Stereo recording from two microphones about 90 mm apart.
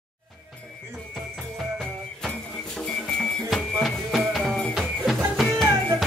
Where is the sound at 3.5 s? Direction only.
Centre (ahead or behind).